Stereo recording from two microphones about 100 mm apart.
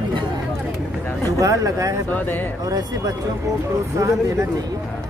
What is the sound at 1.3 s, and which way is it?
Speech, 35° right (ahead or behind).